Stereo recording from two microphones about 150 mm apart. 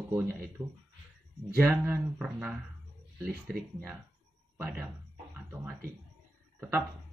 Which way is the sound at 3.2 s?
90° right.